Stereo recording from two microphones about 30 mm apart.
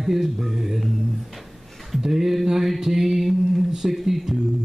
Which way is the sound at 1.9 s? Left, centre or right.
Centre.